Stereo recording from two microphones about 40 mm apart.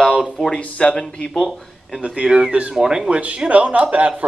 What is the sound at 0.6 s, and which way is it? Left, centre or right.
Speech, left.